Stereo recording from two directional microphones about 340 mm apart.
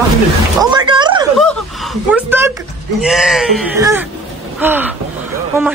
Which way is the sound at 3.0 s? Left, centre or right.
Centre.